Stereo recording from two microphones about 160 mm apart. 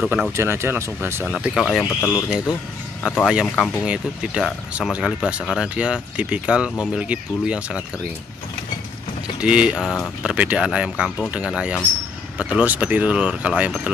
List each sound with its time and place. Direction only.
0.0 s speech: 5° right (ahead or behind)
0.4 s speech: 15° right (ahead or behind)
1.4 s speech: centre (ahead or behind)
9.4 s speech: 5° right (ahead or behind)